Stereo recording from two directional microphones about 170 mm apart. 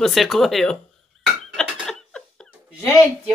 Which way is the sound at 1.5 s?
5° left (ahead or behind).